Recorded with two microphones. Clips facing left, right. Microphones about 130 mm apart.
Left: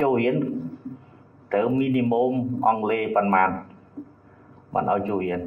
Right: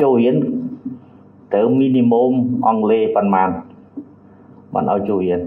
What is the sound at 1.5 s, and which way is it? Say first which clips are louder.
A man's voice: right 8 dB; 15° right (ahead or behind).